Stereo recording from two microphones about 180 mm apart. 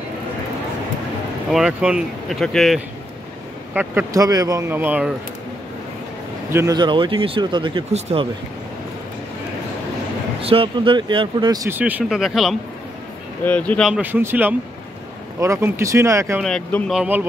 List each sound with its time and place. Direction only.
1.5 s speech: 5° right (ahead or behind)
3.7 s speech: 15° right (ahead or behind)
6.5 s speech: 20° right (ahead or behind)
10.4 s speech: 30° right (ahead or behind)
11.8 s speech: 5° right (ahead or behind)
16.3 s speech: 5° left (ahead or behind)